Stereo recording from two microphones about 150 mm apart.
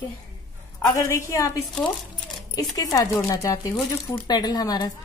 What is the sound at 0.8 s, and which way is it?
Speech, 25° left (ahead or behind).